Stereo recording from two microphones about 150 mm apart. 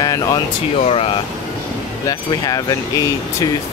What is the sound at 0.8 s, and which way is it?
Speech, 40° left (ahead or behind).